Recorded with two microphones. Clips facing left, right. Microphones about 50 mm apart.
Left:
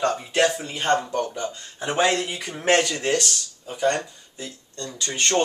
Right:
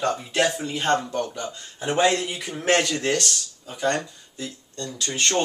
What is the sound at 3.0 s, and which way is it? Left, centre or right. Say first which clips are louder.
Speech: left 1 dB; centre.